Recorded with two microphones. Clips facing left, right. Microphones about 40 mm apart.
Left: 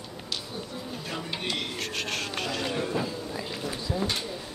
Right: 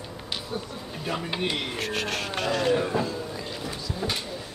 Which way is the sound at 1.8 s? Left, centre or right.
Centre.